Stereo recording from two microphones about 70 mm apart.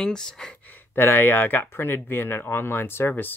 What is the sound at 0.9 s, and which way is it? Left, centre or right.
Speech, left.